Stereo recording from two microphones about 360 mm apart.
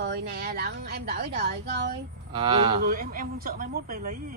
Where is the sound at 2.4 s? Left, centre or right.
Centre.